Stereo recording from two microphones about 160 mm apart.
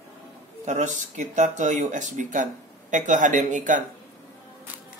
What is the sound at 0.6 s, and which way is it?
Speech, 50° right (ahead or behind).